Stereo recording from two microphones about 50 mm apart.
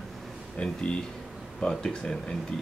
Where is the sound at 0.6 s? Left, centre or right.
Left.